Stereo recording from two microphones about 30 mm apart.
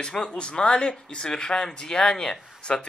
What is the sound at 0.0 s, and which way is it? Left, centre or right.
Speech, left.